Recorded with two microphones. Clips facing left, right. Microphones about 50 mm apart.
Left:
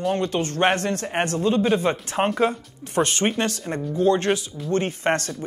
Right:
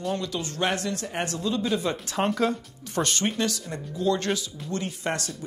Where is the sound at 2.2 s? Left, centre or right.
Left.